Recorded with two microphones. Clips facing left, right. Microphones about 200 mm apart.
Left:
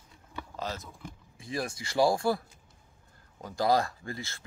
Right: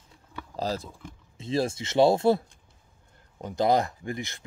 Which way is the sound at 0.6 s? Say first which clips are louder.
Right 7 dB; 35° right (ahead or behind).